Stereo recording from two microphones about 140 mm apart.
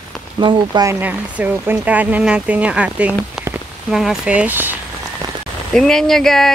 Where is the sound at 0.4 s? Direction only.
35° right (ahead or behind).